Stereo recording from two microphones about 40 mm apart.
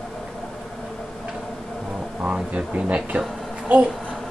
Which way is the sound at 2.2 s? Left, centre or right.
Right.